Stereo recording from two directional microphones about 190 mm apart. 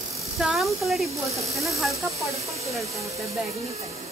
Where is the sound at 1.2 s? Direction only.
35° right (ahead or behind).